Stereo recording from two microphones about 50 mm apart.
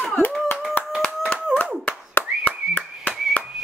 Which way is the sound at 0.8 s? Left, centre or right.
Left.